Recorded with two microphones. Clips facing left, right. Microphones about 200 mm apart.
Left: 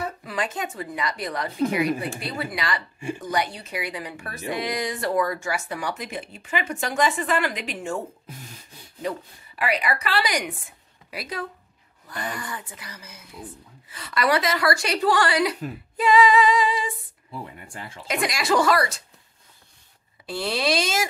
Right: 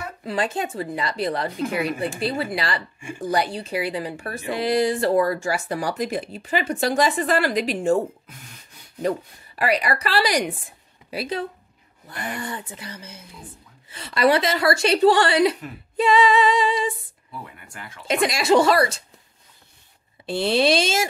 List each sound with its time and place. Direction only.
0.2 s speech: 30° right (ahead or behind)
9.6 s a woman's voice: 40° right (ahead or behind)
17.3 s speech: 30° left (ahead or behind)
18.0 s a woman's voice: 25° right (ahead or behind)
20.2 s a woman's voice: 25° right (ahead or behind)